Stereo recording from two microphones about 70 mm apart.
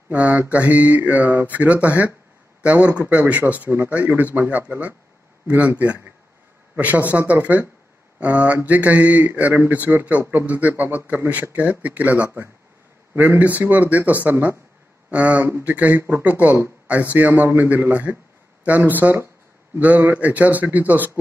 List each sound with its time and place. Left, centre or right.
0.1 s speech: right
16.0 s speech: right
16.3 s speech: right
20.2 s speech: right